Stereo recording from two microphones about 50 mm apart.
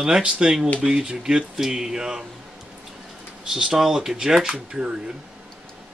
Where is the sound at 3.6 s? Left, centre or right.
Centre.